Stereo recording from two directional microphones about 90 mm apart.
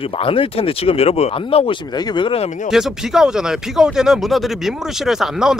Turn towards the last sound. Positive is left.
turn(degrees=-5)  # may be behind; listen again after turning